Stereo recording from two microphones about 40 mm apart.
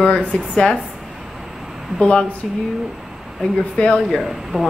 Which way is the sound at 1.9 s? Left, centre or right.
Left.